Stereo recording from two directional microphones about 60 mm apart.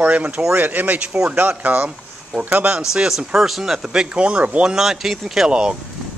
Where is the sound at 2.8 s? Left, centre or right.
Centre.